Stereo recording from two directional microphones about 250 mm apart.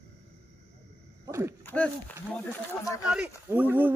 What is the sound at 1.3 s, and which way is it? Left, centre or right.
Speech, centre.